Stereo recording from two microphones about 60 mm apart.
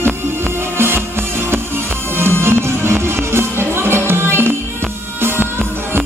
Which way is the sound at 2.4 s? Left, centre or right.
Right.